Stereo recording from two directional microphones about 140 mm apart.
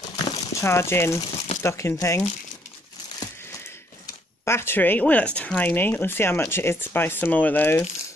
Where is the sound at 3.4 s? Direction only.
20° left (ahead or behind).